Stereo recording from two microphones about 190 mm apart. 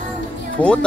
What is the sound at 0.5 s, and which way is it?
Speech, 5° left (ahead or behind).